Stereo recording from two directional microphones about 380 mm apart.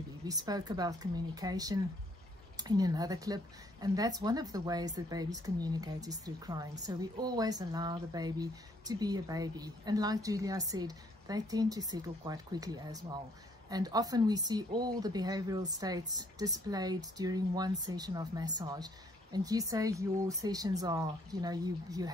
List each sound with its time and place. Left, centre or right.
0.3 s speech: centre